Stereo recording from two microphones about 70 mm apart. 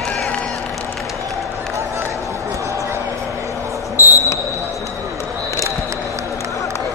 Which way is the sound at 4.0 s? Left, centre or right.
Left.